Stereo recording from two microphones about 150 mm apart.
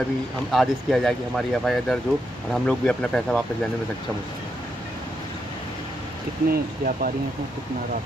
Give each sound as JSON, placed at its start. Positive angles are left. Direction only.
{"t": 0.5, "sound": "speech", "side_deg": 0}
{"t": 6.5, "sound": "speech", "side_deg": -75}